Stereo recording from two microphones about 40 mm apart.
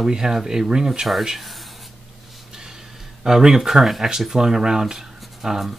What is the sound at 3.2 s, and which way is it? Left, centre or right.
Speech, centre.